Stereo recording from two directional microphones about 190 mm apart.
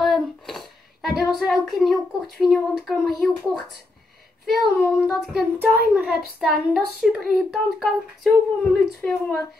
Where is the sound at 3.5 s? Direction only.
55° right (ahead or behind).